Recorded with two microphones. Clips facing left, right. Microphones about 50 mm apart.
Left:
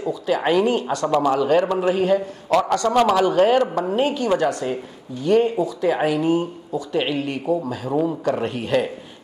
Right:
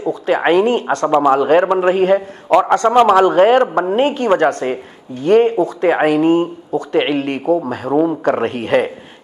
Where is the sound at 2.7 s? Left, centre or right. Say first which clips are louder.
Right 7 dB; right.